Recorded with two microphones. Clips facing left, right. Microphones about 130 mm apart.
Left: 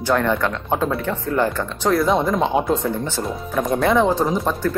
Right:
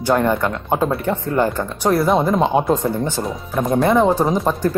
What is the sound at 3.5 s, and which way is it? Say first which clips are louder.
Speech: right 2 dB; 5° right (ahead or behind).